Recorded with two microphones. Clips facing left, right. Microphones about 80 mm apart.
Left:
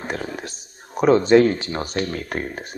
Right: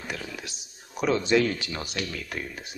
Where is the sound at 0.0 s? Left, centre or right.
Left.